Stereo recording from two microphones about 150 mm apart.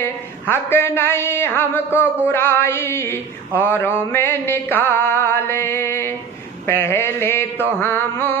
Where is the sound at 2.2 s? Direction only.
15° left (ahead or behind).